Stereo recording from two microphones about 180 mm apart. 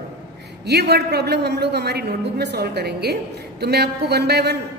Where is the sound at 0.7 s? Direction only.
65° right (ahead or behind).